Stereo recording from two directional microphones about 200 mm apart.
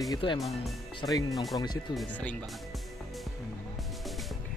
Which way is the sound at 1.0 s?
20° left (ahead or behind).